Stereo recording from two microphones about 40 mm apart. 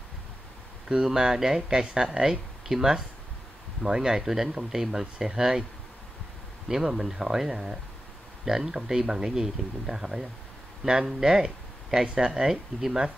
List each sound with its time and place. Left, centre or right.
1.0 s speech: centre
6.7 s speech: centre